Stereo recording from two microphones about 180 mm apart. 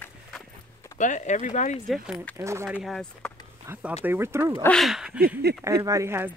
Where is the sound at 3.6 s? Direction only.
15° right (ahead or behind).